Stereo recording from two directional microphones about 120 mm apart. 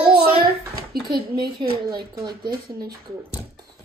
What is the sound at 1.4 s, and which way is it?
Speech, 35° right (ahead or behind).